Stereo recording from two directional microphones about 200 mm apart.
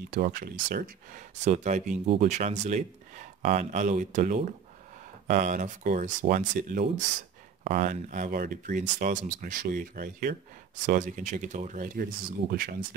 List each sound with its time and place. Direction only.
0.1 s speech: 45° right (ahead or behind)